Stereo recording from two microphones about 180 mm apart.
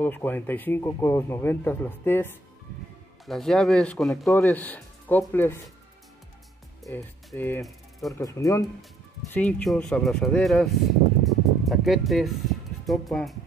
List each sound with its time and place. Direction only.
0.0 s speech: 10° left (ahead or behind)
3.3 s speech: centre (ahead or behind)
4.3 s speech: 15° left (ahead or behind)
7.3 s speech: 10° left (ahead or behind)
9.3 s speech: 5° left (ahead or behind)
11.2 s music: centre (ahead or behind)